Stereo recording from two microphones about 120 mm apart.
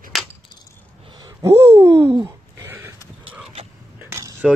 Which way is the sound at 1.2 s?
25° right (ahead or behind).